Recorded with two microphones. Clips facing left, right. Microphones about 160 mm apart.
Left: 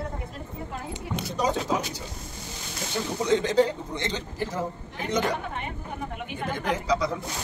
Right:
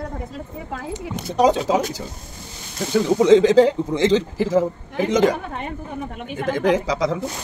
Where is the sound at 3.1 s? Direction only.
90° right.